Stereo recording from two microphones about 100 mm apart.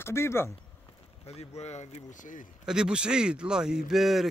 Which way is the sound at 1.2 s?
90° left.